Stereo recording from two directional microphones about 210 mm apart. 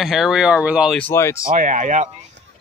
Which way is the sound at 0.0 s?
Centre (ahead or behind).